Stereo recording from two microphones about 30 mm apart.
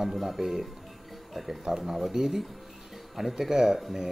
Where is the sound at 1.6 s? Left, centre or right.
Centre.